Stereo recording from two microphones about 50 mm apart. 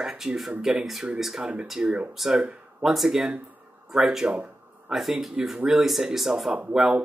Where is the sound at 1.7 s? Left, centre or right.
Centre.